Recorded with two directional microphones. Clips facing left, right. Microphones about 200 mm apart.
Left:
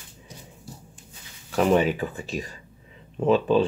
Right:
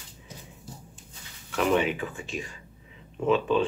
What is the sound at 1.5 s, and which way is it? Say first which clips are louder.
Speech: left 4 dB; 35° left (ahead or behind).